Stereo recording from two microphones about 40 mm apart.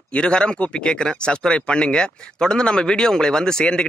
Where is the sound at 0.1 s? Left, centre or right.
Left.